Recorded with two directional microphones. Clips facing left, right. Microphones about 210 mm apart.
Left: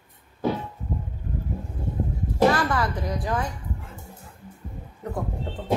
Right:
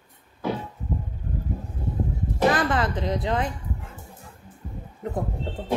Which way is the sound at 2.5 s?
20° right (ahead or behind).